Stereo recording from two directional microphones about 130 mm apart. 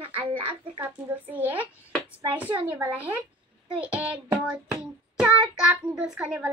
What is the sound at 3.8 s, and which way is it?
Child singing, 10° right (ahead or behind).